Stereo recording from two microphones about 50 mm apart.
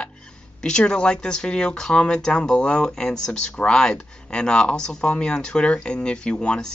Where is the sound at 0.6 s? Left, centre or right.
Centre.